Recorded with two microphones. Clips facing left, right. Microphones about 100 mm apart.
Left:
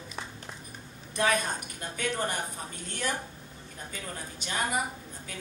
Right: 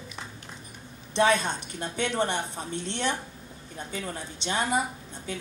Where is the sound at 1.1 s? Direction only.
25° right (ahead or behind).